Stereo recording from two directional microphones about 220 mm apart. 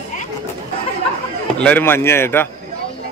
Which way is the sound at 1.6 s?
10° left (ahead or behind).